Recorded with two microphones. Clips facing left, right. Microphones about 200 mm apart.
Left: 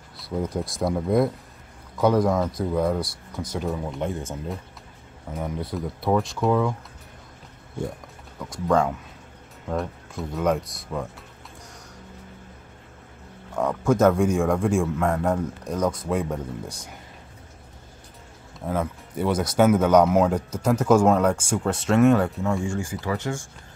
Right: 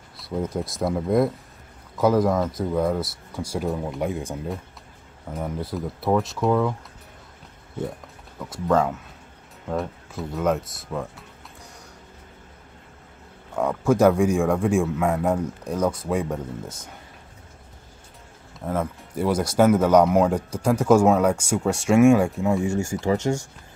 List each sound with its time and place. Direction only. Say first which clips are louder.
0.2 s speech: even; centre (ahead or behind)
5.3 s speech: right 1 dB; 5° right (ahead or behind)
8.4 s speech: even; 5° right (ahead or behind)
13.6 s a man's voice: right 1 dB; 5° right (ahead or behind)
18.7 s a man's voice: even; centre (ahead or behind); by 23.4 s 25° right (ahead or behind)